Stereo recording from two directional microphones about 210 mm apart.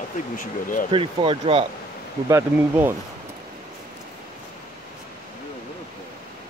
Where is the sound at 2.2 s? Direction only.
10° right (ahead or behind).